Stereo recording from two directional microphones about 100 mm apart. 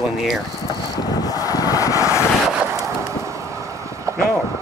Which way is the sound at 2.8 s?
30° right (ahead or behind).